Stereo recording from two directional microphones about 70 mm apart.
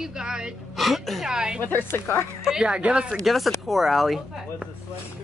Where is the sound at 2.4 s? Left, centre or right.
Centre.